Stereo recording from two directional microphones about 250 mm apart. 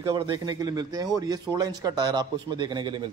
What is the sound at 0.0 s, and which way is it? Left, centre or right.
Speech, centre.